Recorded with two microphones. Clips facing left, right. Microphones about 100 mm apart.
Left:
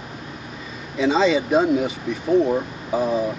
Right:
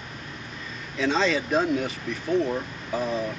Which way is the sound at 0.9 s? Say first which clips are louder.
Left 6 dB; 5° left (ahead or behind).